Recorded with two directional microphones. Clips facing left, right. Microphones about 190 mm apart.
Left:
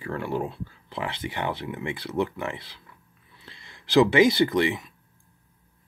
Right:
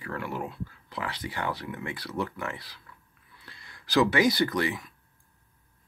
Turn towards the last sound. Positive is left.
turn(degrees=25)  # may be behind; listen again after turning